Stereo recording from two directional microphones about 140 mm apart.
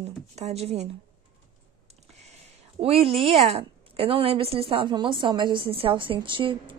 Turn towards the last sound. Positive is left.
turn(degrees=-35)  # may be behind; listen again after turning